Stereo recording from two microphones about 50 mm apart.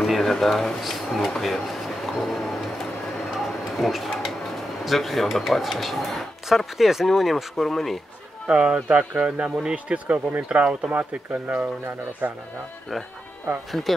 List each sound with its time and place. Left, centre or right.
0.0 s speech: centre
3.7 s a sound: centre
4.8 s speech: centre
8.5 s speech: right
9.2 s speech: centre
10.0 s speech: right
13.7 s speech: centre